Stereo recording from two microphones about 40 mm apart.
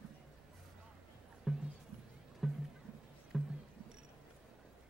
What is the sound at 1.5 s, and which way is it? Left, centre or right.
Music, centre.